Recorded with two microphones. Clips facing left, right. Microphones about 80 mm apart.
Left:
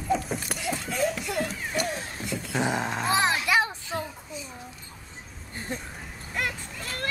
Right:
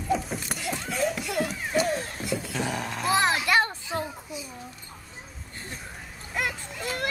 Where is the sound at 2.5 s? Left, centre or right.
Left.